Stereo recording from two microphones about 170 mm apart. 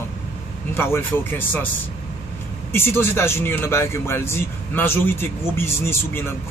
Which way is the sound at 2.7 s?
15° left (ahead or behind).